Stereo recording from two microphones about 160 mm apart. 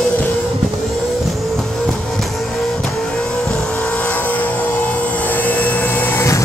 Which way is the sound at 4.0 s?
10° left (ahead or behind).